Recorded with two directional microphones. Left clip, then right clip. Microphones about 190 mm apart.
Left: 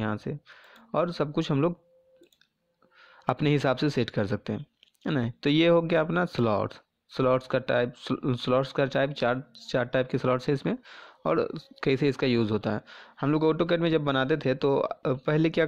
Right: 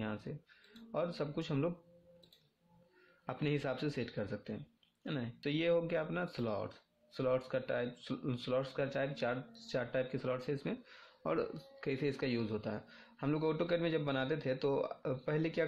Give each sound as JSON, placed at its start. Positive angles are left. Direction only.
{"t": 0.0, "sound": "speech", "side_deg": 45}
{"t": 3.3, "sound": "speech", "side_deg": 45}